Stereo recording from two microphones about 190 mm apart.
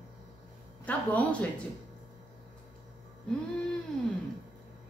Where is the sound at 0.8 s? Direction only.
5° left (ahead or behind).